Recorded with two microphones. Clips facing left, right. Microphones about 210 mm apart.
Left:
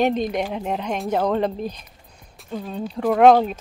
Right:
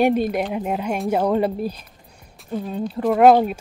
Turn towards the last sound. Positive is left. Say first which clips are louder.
# even
turn(degrees=-5)  # may be behind; listen again after turning